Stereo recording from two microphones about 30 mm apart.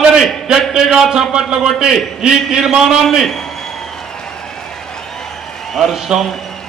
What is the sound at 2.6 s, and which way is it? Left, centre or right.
Speech, centre.